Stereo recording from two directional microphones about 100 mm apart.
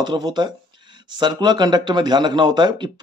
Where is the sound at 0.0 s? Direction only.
45° right (ahead or behind).